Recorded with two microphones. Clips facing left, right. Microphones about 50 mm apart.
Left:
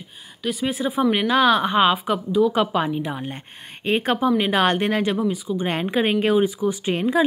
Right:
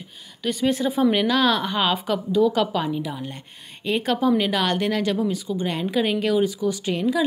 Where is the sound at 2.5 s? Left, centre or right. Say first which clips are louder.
Left 2 dB; left.